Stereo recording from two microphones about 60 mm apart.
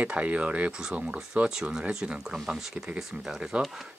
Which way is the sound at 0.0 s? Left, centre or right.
Right.